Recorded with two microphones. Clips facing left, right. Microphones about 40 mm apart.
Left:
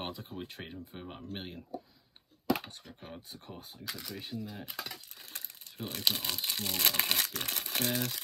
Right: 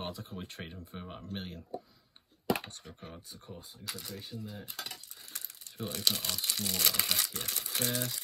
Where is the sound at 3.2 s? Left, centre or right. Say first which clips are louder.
Left 1 dB; left.